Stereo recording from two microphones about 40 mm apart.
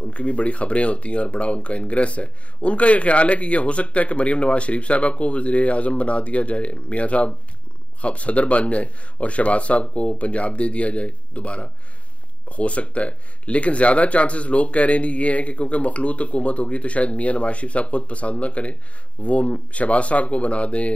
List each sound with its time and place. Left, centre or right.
0.0 s speech: left